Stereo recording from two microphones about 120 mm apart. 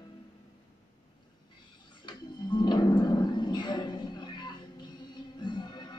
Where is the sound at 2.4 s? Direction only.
40° left (ahead or behind).